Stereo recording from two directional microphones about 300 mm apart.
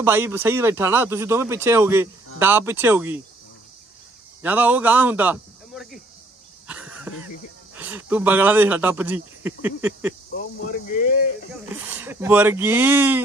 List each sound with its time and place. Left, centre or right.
0.0 s speech: centre
4.4 s speech: centre
6.7 s throat clearing: centre
7.7 s speech: centre
10.9 s a sound: left
11.7 s speech: centre